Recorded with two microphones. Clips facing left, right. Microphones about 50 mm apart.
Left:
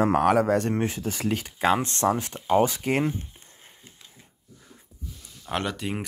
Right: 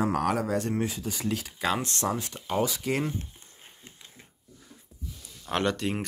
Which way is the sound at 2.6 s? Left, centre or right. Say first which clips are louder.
Left 4 dB; left.